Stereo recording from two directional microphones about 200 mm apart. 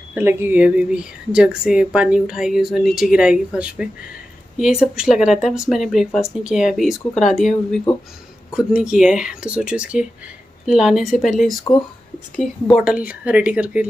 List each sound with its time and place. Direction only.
0.1 s speech: 10° right (ahead or behind)
11.7 s speech: 25° left (ahead or behind)
12.4 s speech: centre (ahead or behind)